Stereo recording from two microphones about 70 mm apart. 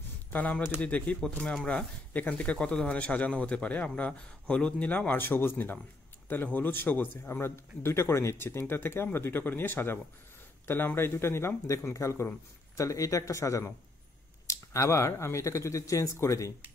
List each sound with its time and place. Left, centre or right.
0.3 s a man's voice: left